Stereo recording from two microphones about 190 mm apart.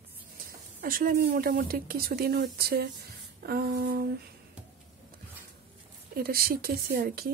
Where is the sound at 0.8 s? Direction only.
50° right (ahead or behind).